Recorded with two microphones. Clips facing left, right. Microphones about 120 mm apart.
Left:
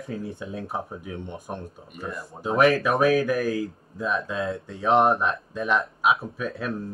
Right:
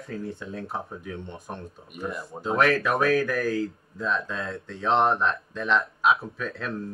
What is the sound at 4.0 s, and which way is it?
Speech, 10° left (ahead or behind).